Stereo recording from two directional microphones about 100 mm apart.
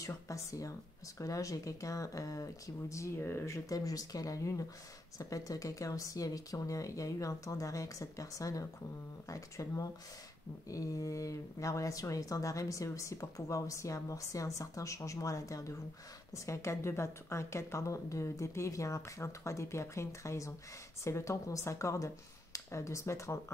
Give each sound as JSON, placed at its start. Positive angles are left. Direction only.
{"t": 0.0, "sound": "speech", "side_deg": 35}